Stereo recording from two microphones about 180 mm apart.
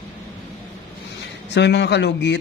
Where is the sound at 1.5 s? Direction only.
75° left (ahead or behind).